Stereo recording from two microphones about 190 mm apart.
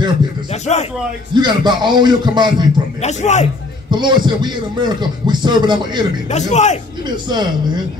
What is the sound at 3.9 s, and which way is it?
A man's voice, 25° right (ahead or behind).